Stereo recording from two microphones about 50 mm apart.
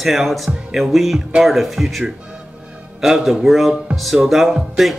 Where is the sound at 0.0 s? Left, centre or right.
Centre.